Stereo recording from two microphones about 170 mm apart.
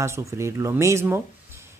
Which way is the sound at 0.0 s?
15° right (ahead or behind).